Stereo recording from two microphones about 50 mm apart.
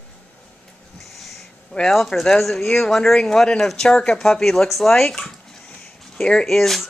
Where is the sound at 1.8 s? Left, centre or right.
Centre.